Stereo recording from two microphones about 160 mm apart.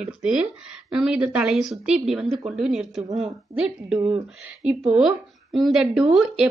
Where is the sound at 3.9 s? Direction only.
35° right (ahead or behind).